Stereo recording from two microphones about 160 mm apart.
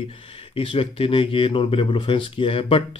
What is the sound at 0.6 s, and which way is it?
Speech, 35° left (ahead or behind).